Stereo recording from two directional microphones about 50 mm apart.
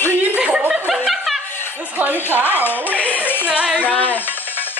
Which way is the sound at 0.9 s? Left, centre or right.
Centre.